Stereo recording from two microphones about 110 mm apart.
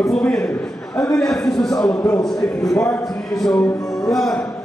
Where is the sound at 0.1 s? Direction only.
10° left (ahead or behind).